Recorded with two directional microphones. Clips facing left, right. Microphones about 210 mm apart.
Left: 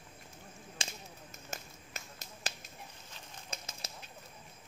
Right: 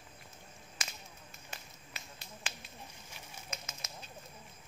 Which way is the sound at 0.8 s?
30° left (ahead or behind).